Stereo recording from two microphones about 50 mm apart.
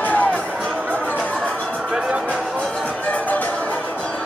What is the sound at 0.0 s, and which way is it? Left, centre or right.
Music, left.